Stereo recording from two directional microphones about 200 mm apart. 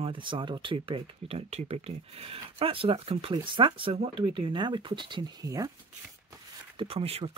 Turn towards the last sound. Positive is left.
turn(degrees=-30)  # may be behind; listen again after turning